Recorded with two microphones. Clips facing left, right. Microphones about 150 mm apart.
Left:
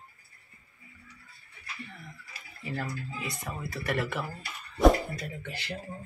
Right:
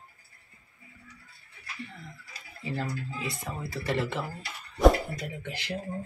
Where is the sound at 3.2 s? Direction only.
25° right (ahead or behind).